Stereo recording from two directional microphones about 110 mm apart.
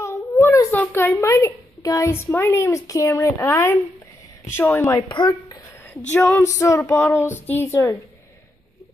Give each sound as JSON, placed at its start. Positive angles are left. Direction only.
{"t": 0.0, "sound": "a sound", "side_deg": 25}
{"t": 0.7, "sound": "a woman's voice", "side_deg": 20}
{"t": 5.0, "sound": "speech", "side_deg": 50}
{"t": 6.1, "sound": "female singing", "side_deg": 15}
{"t": 6.6, "sound": "a woman's voice", "side_deg": 30}